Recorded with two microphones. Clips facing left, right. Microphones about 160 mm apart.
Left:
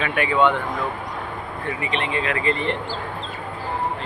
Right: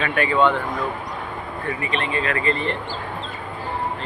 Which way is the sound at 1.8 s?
20° left (ahead or behind).